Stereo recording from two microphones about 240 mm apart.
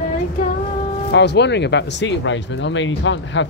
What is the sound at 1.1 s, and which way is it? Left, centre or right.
Speech, left.